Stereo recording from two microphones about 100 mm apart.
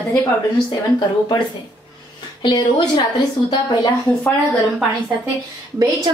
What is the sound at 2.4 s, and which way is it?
Speech, 50° left (ahead or behind).